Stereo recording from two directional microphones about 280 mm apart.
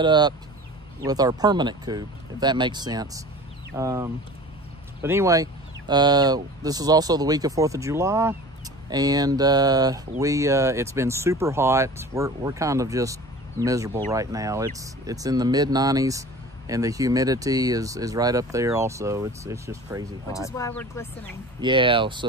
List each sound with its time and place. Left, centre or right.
0.0 s speech: centre
20.3 s speech: centre
21.5 s speech: centre